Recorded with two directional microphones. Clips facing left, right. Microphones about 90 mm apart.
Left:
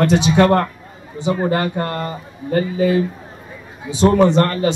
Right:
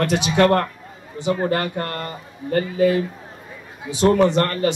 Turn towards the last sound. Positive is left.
turn(degrees=25)  # may be behind; listen again after turning